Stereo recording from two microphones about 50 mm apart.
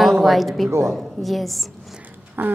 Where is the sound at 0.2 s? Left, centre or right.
Centre.